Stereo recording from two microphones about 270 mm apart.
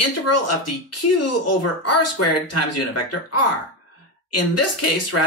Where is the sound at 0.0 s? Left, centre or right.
Left.